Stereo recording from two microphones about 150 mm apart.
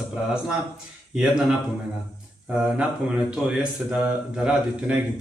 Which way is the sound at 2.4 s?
5° right (ahead or behind).